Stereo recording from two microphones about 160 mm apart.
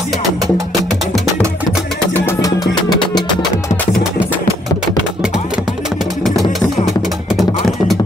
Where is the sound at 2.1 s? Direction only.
15° left (ahead or behind).